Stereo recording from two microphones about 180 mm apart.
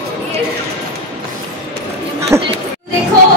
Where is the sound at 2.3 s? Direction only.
15° right (ahead or behind).